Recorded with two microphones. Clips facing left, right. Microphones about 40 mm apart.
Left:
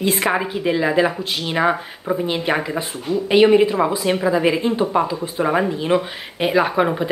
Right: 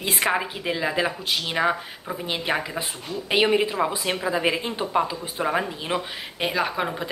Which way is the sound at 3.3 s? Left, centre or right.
Centre.